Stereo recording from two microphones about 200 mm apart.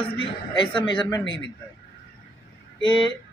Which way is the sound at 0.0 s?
25° left (ahead or behind).